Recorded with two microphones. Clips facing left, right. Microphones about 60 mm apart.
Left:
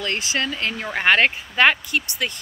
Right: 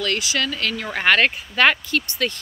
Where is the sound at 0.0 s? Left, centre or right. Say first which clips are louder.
Right 1 dB; left.